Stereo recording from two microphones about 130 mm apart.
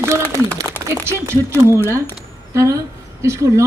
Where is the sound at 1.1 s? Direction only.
20° right (ahead or behind).